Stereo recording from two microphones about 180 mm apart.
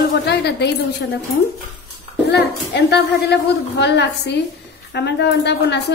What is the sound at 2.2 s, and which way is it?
Speech, 70° left (ahead or behind).